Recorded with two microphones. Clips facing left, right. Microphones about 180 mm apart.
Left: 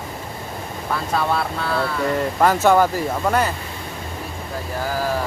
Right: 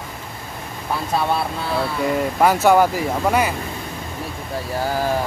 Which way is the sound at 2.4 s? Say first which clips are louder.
Right 1 dB; 10° right (ahead or behind).